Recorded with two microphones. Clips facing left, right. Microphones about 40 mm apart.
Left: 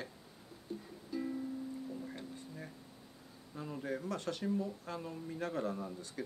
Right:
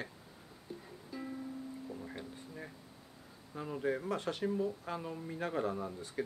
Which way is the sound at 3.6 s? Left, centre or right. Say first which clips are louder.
Right 4 dB; centre.